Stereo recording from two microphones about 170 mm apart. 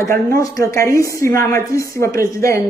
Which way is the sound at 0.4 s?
20° left (ahead or behind).